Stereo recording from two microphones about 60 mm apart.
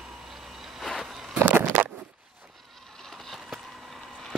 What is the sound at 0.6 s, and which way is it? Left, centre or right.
Vehicle, centre.